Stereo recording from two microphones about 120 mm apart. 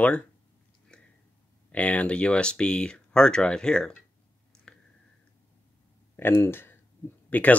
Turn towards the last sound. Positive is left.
turn(degrees=15)  # may be behind; listen again after turning